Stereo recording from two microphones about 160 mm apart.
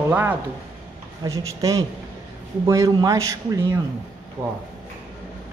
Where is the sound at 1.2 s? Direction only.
20° right (ahead or behind).